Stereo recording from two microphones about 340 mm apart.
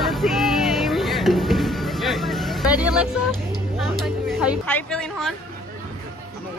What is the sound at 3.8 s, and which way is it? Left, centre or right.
Music, centre.